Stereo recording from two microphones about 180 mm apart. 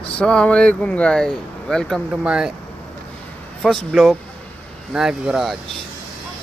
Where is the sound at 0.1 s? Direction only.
5° left (ahead or behind).